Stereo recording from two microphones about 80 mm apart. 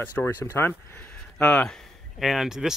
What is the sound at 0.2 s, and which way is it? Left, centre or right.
Speech, left.